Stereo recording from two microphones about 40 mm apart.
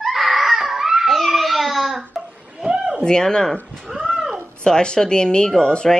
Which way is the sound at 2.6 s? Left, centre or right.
Right.